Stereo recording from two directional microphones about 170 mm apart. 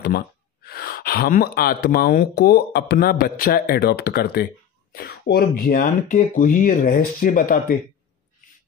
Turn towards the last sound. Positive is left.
turn(degrees=60)  # may be behind; listen again after turning